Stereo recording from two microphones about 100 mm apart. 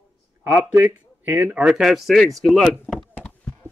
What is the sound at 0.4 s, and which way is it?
Speech, 20° right (ahead or behind).